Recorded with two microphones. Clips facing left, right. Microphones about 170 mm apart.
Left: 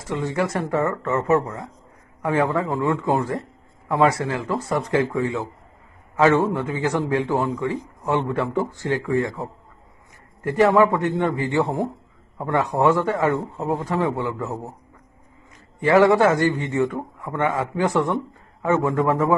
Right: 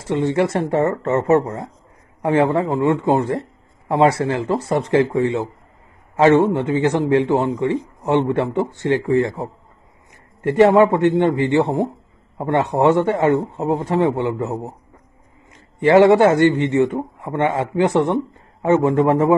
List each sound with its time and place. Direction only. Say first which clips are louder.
0.0 s a man's voice: right 6 dB; 25° right (ahead or behind)
15.8 s a man's voice: right 4 dB; 25° right (ahead or behind)